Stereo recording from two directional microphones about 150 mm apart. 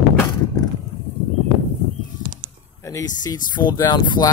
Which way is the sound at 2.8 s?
20° left (ahead or behind).